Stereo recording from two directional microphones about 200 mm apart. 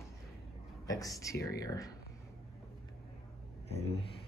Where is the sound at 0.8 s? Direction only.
15° left (ahead or behind).